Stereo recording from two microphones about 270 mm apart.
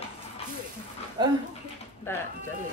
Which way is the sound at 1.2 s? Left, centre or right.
Centre.